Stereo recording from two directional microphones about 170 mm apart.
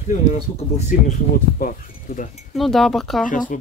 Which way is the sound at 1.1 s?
50° left (ahead or behind).